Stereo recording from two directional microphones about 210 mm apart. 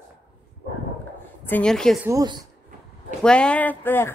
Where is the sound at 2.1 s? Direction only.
20° right (ahead or behind).